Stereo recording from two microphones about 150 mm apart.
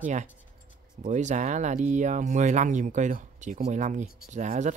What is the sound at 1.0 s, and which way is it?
Speech, 55° right (ahead or behind).